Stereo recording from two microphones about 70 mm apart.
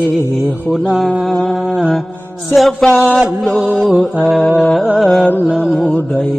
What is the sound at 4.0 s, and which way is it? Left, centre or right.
Chant, centre.